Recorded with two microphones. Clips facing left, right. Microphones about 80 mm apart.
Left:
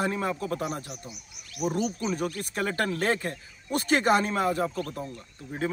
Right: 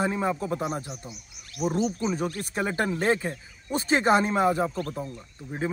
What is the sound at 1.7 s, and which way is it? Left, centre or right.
Speech, right.